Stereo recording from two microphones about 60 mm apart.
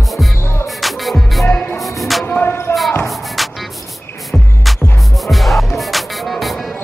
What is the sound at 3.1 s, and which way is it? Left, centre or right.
Music, centre.